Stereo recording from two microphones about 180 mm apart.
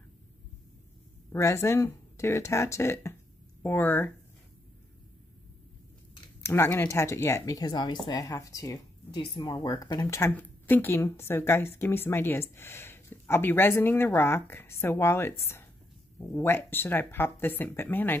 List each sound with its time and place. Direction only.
1.3 s speech: 15° left (ahead or behind)
6.4 s speech: 15° left (ahead or behind)